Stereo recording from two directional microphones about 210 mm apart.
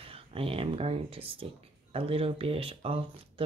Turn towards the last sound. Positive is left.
turn(degrees=-25)  # may be behind; listen again after turning